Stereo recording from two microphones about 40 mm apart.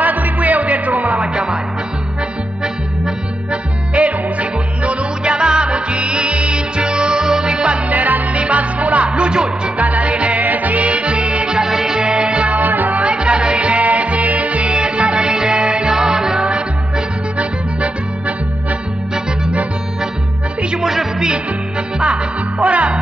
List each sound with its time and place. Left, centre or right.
0.0 s music: right
1.2 s music: right
3.9 s music: right
7.9 s music: right
9.8 s music: right
11.6 s music: centre
12.0 s music: right
12.5 s music: right
13.0 s music: right
14.7 s music: right
17.4 s music: right
20.8 s music: centre
21.9 s music: right